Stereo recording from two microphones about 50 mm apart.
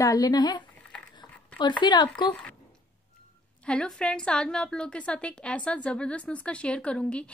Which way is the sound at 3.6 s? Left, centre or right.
Centre.